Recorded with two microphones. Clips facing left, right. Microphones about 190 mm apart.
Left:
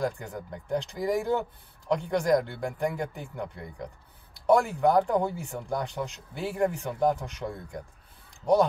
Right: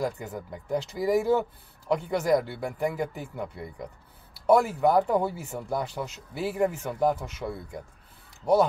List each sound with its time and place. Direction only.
0.0 s speech: 5° right (ahead or behind)